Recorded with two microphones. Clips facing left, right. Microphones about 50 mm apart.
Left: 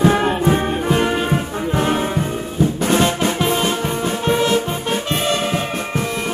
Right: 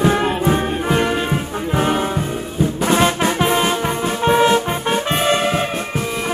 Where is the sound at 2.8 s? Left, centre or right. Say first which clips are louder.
Right 3 dB; centre.